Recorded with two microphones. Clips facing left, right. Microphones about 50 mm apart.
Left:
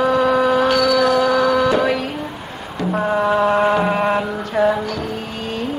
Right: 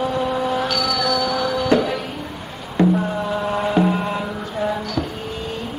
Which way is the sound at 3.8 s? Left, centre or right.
Left.